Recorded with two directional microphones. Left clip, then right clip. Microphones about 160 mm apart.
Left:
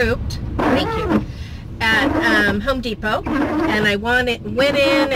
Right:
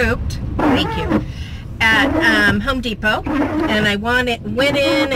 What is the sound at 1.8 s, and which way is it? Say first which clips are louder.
Speech: right 3 dB; 25° right (ahead or behind).